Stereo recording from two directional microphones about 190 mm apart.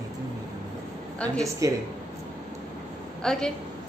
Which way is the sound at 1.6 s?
15° right (ahead or behind).